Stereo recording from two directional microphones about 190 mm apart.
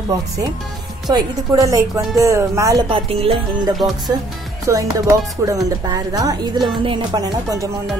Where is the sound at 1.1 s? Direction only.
20° right (ahead or behind).